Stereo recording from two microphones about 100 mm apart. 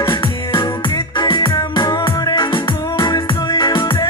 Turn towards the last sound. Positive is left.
turn(degrees=40)  # may be behind; listen again after turning